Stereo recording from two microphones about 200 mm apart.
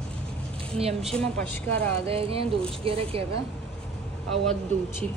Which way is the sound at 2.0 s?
30° right (ahead or behind).